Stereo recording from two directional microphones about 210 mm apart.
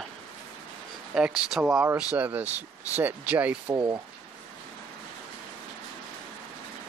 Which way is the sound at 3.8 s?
15° right (ahead or behind).